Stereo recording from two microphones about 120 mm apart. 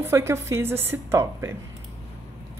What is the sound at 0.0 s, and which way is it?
Speech, 20° right (ahead or behind).